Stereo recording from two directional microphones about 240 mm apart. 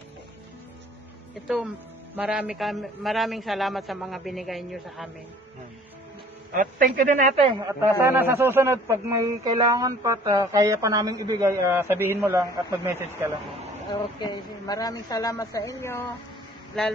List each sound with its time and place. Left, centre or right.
2.1 s a man's voice: centre
6.5 s a man's voice: right; by 13.3 s centre
14.2 s a woman's voice: centre